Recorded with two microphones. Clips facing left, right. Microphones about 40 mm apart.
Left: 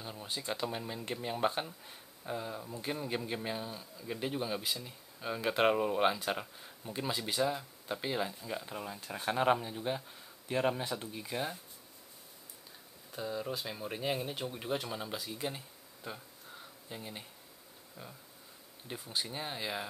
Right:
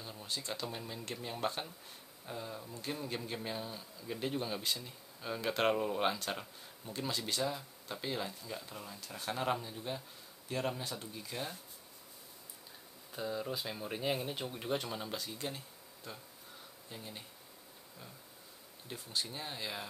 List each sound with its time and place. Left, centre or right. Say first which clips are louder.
0.0 s speech: left 2 dB; centre
13.1 s speech: left 1 dB; centre
18.9 s speech: left 2 dB; centre